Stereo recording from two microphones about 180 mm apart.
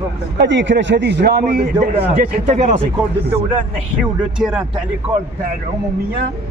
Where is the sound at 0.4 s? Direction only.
85° right; by 1.7 s 60° right (ahead or behind).